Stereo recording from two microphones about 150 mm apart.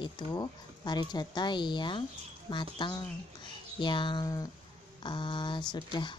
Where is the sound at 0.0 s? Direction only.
30° left (ahead or behind).